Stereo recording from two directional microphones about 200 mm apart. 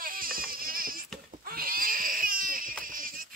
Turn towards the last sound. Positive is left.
turn(degrees=-45)  # may be behind; listen again after turning